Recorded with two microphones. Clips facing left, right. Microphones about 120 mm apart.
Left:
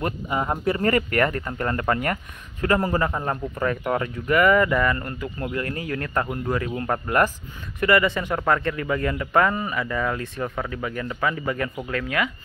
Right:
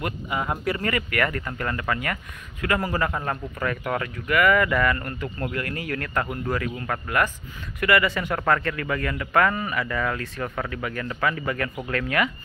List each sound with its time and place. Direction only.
0.0 s speech: 30° left (ahead or behind)
0.8 s speech: 35° left (ahead or behind)
3.1 s speech: 15° left (ahead or behind)
11.7 s speech: 5° left (ahead or behind)